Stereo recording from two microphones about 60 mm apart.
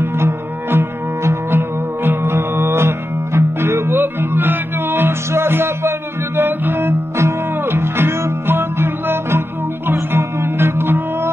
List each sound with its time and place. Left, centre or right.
0.0 s music: right